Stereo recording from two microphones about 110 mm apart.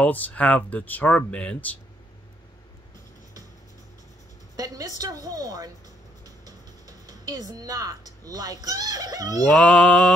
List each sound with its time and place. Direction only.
0.0 s speech: 15° left (ahead or behind)
4.6 s a woman's voice: 35° right (ahead or behind)
9.6 s speech: 10° left (ahead or behind)